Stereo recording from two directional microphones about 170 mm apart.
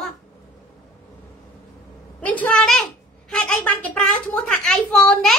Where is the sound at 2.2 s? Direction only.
10° left (ahead or behind).